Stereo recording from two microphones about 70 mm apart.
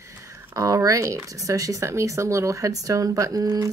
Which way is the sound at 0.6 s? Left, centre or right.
Right.